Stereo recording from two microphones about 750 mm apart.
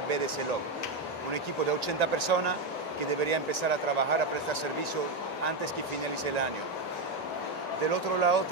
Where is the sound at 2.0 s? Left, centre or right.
Right.